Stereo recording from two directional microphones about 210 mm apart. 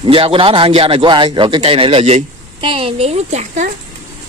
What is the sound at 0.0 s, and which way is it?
A man's voice, 25° right (ahead or behind).